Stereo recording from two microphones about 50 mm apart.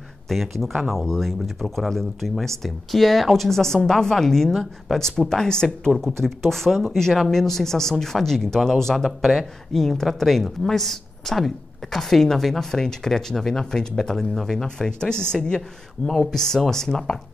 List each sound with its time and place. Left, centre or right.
0.3 s speech: centre